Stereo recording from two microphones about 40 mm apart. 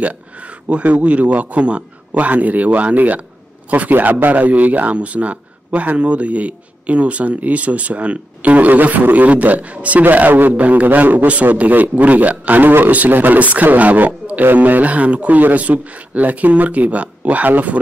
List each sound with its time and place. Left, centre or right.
0.7 s a man's voice: right
10.0 s a man's voice: right